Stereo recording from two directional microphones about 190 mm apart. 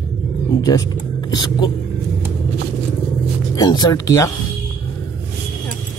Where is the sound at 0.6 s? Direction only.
20° left (ahead or behind).